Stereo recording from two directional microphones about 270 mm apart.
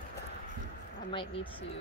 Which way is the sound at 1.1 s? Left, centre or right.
Centre.